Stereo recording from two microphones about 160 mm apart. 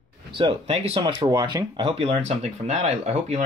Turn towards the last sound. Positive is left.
turn(degrees=-40)  # may be behind; listen again after turning